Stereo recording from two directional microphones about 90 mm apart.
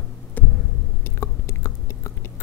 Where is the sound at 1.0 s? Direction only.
30° left (ahead or behind).